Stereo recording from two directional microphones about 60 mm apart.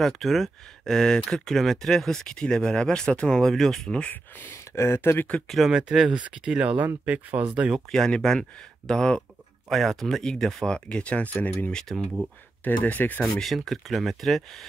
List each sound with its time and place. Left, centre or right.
0.0 s speech: centre
4.0 s speech: left
4.7 s speech: left
5.7 s speech: centre
7.9 s speech: centre; by 11.5 s left
11.9 s speech: centre
12.6 s speech: left
13.3 s speech: centre